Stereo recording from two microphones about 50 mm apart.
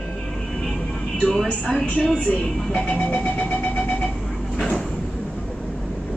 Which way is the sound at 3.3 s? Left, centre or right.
Left.